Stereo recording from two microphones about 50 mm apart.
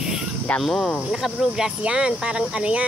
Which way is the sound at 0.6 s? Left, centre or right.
Centre.